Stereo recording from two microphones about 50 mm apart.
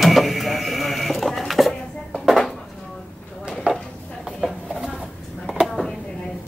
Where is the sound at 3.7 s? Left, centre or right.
Centre.